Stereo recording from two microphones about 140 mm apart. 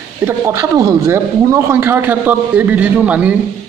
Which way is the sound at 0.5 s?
25° right (ahead or behind).